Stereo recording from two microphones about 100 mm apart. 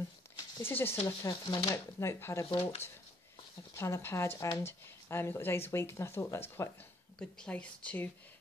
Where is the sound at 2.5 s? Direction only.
65° left (ahead or behind).